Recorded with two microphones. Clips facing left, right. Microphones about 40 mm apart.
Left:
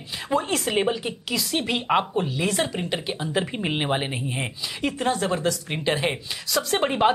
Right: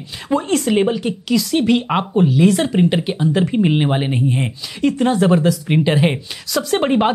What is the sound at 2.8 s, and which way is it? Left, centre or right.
Speech, right.